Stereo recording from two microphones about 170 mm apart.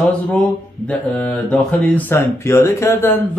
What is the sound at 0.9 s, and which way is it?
Speech, 10° left (ahead or behind).